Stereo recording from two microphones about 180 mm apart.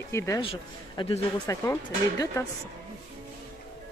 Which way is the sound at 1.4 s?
15° left (ahead or behind).